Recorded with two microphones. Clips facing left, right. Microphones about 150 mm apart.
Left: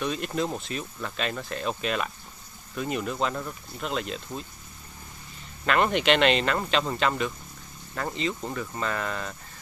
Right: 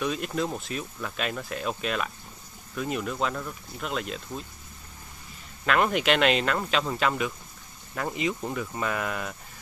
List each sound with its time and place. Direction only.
0.0 s speech: centre (ahead or behind)
5.7 s speech: centre (ahead or behind)